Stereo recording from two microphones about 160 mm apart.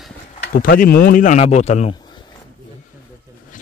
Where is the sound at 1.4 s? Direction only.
45° left (ahead or behind).